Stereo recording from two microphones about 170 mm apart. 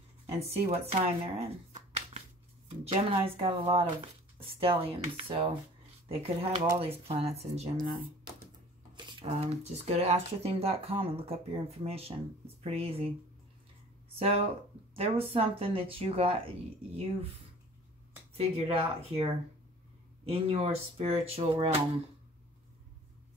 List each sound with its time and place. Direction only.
0.4 s speech: 35° right (ahead or behind)
8.9 s speech: 30° right (ahead or behind)
14.1 s speech: 35° right (ahead or behind)
18.4 s speech: 35° right (ahead or behind)